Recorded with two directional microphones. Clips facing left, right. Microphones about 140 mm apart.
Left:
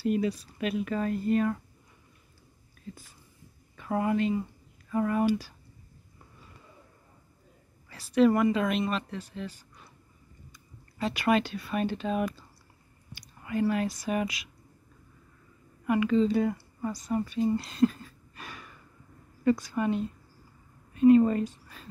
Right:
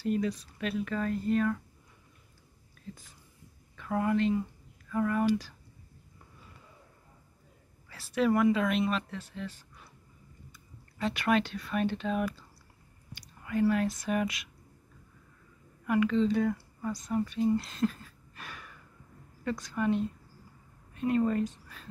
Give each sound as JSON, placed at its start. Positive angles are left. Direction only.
{"t": 0.0, "sound": "speech", "side_deg": 10}
{"t": 3.7, "sound": "speech", "side_deg": 15}
{"t": 7.9, "sound": "speech", "side_deg": 0}
{"t": 13.4, "sound": "speech", "side_deg": 5}
{"t": 15.9, "sound": "speech", "side_deg": 5}